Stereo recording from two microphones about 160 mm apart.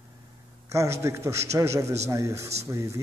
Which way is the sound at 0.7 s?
20° right (ahead or behind).